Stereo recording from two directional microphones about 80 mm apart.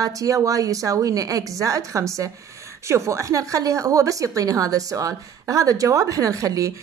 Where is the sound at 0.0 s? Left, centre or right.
Right.